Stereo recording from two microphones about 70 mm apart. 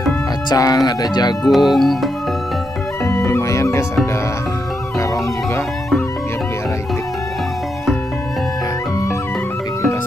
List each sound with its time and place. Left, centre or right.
0.6 s speech: left
1.4 s speech: centre
3.2 s music: left